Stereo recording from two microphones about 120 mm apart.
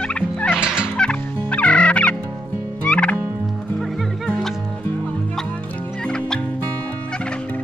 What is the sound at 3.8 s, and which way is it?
Music, centre (ahead or behind).